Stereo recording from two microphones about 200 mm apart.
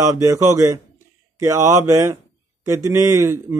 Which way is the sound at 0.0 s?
15° right (ahead or behind).